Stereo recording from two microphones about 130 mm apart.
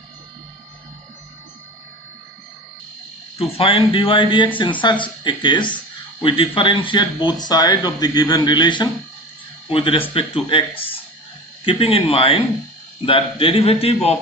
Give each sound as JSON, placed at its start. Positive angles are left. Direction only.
{"t": 3.3, "sound": "speech", "side_deg": 45}
{"t": 11.6, "sound": "speech", "side_deg": 45}